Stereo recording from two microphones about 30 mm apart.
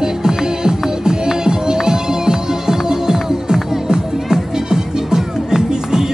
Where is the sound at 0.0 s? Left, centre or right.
Right.